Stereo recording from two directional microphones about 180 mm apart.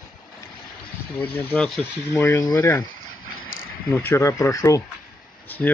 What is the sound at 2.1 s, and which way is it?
Speech, 15° left (ahead or behind).